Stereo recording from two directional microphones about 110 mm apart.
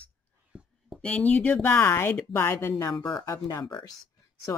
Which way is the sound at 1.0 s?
10° left (ahead or behind).